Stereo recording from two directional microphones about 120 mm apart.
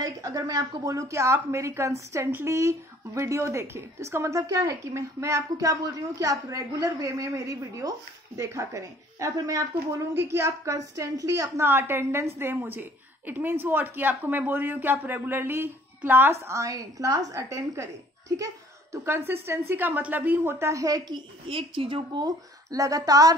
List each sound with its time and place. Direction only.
0.0 s a woman's voice: 30° right (ahead or behind)
21.5 s a woman's voice: 50° right (ahead or behind); by 23.3 s 30° right (ahead or behind)